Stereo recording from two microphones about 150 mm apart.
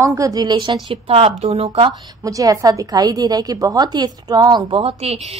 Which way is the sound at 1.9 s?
20° right (ahead or behind).